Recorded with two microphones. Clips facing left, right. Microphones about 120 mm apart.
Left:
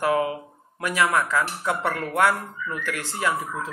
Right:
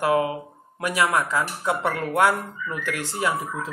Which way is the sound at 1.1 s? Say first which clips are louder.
Even; 25° right (ahead or behind).